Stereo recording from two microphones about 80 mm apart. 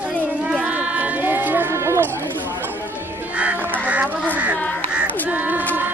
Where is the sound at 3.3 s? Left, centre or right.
Centre.